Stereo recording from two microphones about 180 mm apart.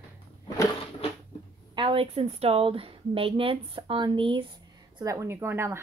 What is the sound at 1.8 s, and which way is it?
A woman's voice, 30° right (ahead or behind).